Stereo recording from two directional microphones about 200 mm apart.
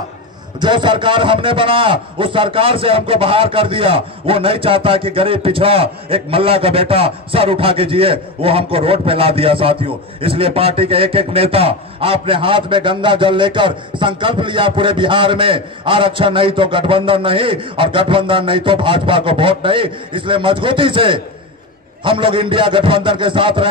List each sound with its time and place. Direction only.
0.6 s a man's voice: 25° right (ahead or behind)